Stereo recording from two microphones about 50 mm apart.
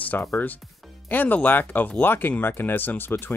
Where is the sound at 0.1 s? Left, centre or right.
Left.